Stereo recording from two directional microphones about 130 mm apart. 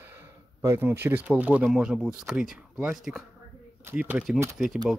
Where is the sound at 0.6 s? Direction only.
20° right (ahead or behind).